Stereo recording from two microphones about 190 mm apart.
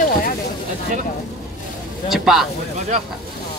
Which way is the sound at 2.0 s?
Centre (ahead or behind).